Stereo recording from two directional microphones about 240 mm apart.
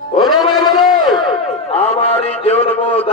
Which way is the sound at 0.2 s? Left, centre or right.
Centre.